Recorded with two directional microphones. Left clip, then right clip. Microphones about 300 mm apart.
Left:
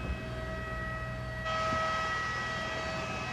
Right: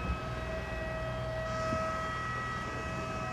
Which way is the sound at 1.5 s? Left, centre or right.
Centre.